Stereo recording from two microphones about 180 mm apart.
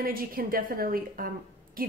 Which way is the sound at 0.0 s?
55° right (ahead or behind).